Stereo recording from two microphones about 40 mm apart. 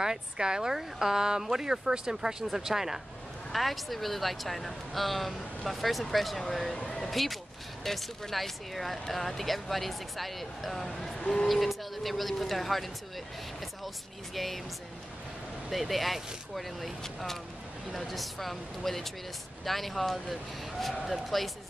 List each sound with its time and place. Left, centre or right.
0.0 s speech: centre
3.5 s speech: centre
6.8 s a sound: left
7.1 s speech: centre
11.1 s speech: left
11.4 s speech: centre
14.3 s speech: centre
15.7 s speech: centre